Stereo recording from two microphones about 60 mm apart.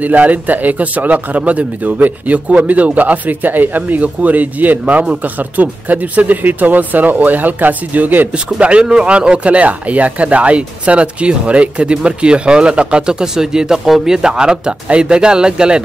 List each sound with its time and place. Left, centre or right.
0.0 s speech: right